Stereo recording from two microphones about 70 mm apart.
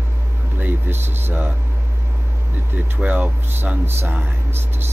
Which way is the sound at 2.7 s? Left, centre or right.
Right.